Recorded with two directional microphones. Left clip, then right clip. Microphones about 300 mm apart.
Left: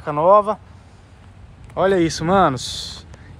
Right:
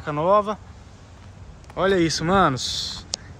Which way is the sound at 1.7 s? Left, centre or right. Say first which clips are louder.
Left 3 dB; centre.